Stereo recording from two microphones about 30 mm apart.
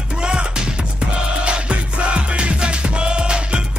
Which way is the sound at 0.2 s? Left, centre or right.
Right.